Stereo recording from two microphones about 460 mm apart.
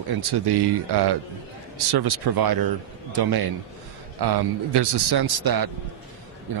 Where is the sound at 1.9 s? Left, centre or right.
Right.